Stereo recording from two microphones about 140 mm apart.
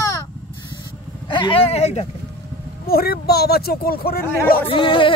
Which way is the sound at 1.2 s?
35° left (ahead or behind).